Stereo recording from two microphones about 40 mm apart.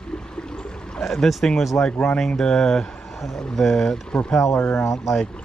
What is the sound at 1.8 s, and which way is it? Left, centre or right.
Speech, left.